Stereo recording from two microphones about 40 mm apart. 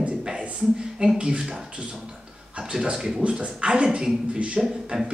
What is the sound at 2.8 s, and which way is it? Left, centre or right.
Speech, centre.